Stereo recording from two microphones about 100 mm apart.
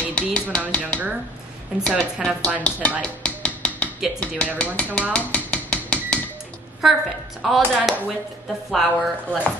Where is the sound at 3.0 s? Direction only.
10° left (ahead or behind).